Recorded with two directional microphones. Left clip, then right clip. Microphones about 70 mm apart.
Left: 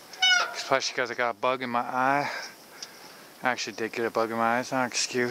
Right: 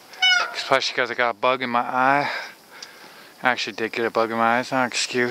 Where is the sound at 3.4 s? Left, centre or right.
Right.